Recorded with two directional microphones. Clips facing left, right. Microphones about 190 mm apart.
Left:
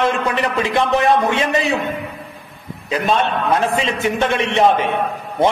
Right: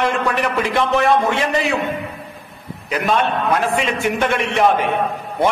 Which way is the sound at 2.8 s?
25° left (ahead or behind).